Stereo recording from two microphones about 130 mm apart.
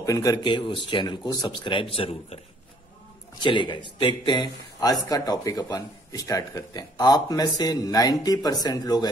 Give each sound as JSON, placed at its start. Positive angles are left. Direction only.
{"t": 0.0, "sound": "speech", "side_deg": 25}
{"t": 3.3, "sound": "speech", "side_deg": 35}